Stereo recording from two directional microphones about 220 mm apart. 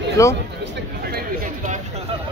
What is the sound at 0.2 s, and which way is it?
Speech, 15° left (ahead or behind).